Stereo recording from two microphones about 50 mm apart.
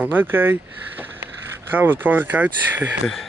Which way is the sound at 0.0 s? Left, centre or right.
Right.